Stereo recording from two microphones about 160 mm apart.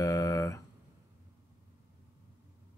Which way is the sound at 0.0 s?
20° left (ahead or behind).